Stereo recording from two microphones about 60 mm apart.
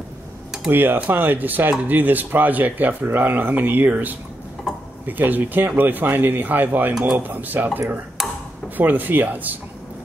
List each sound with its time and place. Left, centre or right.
0.7 s speech: right
8.2 s a sound: centre
8.7 s speech: right